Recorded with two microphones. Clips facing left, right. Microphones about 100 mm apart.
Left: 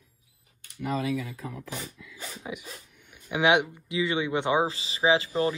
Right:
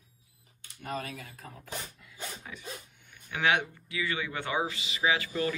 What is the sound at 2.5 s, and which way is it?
Speech, 15° left (ahead or behind).